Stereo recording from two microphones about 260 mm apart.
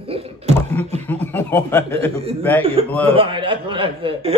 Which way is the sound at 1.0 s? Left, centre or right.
Centre.